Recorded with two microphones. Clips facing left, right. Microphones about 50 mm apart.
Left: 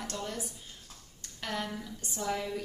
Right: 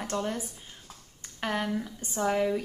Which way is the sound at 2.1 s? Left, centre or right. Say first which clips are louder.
Right 8 dB; right.